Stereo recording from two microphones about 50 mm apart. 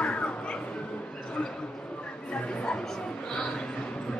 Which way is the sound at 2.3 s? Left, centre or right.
Left.